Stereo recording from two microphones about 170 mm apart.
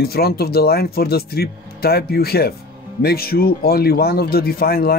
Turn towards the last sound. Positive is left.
turn(degrees=65)  # may be behind; listen again after turning